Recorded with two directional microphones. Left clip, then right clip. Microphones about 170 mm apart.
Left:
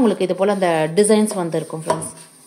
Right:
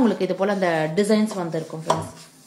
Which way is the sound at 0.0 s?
20° left (ahead or behind).